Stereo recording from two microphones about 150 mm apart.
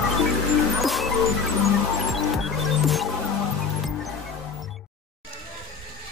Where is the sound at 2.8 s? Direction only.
Centre (ahead or behind).